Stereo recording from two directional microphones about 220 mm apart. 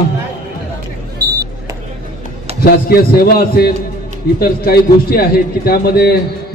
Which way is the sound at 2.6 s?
45° left (ahead or behind).